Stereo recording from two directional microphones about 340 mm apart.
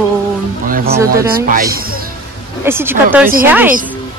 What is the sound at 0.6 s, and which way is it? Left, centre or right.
Speech, right.